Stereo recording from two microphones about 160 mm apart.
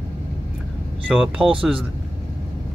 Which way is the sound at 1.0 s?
5° right (ahead or behind).